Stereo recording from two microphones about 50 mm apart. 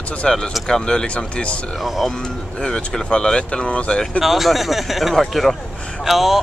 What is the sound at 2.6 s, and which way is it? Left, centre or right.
Speech, centre.